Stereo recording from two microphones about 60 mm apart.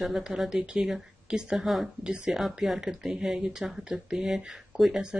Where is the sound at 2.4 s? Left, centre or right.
Centre.